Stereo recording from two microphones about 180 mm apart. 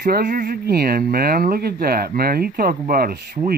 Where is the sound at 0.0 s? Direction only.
60° right (ahead or behind).